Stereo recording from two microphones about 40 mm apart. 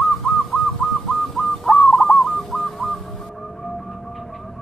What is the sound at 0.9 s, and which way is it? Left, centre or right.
Bird, centre.